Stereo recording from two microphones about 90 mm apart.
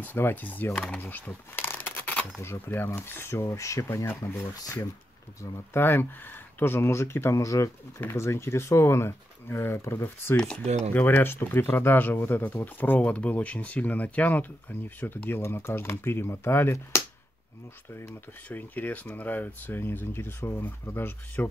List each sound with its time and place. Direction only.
0.0 s speech: 25° left (ahead or behind)
1.0 s bee: 25° left (ahead or behind)
2.4 s speech: 25° left (ahead or behind)
10.3 s speech: 5° left (ahead or behind)
10.9 s speech: 20° left (ahead or behind)
18.5 s speech: 20° left (ahead or behind)